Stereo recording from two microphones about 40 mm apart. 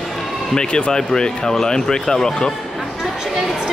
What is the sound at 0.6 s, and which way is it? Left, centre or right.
Speech, left.